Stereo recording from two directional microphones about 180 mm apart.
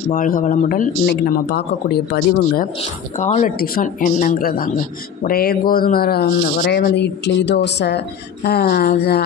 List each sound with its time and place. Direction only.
0.1 s speech: 50° left (ahead or behind)
3.2 s speech: 40° left (ahead or behind); by 8.0 s 70° left (ahead or behind)
8.5 s speech: 55° left (ahead or behind)